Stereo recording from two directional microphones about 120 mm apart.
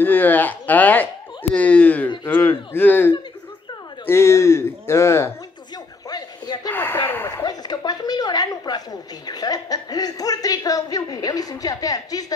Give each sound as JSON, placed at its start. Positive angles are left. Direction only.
{"t": 0.0, "sound": "speech", "side_deg": 15}
{"t": 6.0, "sound": "a sound", "side_deg": 35}
{"t": 6.7, "sound": "speech", "side_deg": 15}
{"t": 7.4, "sound": "a woman's voice", "side_deg": 35}